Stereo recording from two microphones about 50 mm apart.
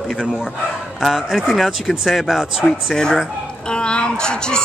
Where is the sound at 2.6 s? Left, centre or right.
Centre.